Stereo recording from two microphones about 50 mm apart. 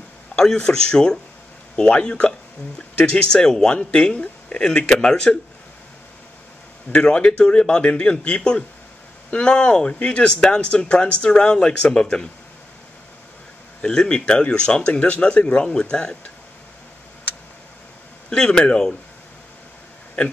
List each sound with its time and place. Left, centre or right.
0.4 s speech: centre
6.9 s speech: centre
13.7 s speech: centre
18.3 s speech: centre